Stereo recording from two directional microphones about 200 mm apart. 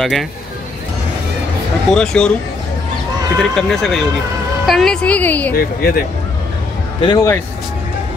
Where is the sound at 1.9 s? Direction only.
5° left (ahead or behind).